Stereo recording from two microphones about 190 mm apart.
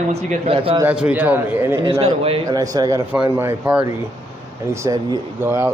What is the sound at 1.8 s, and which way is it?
Speech, 30° right (ahead or behind).